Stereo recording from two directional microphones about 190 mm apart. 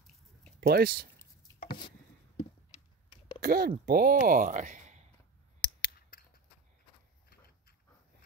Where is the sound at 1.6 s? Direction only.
25° left (ahead or behind).